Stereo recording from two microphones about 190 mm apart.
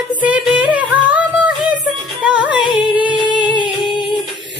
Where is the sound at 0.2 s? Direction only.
5° right (ahead or behind).